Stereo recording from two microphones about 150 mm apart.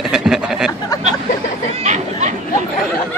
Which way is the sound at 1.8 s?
50° right (ahead or behind).